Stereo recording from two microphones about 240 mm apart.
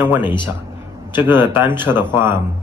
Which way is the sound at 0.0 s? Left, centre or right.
Centre.